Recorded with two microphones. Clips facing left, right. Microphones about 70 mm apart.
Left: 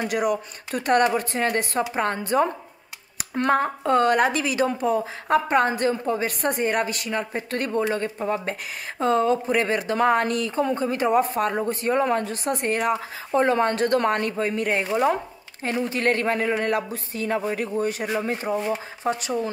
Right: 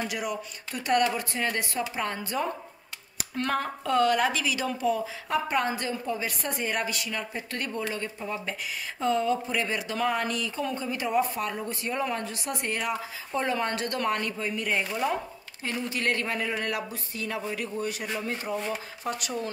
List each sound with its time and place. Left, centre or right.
0.1 s a woman's voice: left